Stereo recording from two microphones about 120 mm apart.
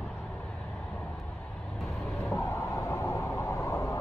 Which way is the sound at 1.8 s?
Centre (ahead or behind).